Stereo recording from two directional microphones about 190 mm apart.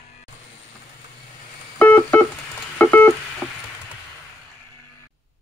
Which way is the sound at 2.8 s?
10° left (ahead or behind).